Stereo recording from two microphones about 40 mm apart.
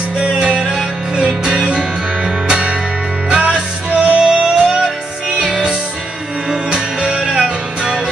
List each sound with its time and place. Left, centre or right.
0.2 s music: right
7.2 s music: centre